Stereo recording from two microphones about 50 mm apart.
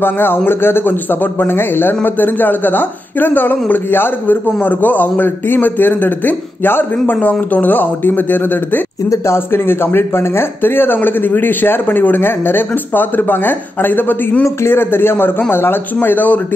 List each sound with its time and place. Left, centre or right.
0.0 s a man's voice: left
7.2 s a man's voice: left
9.1 s speech: left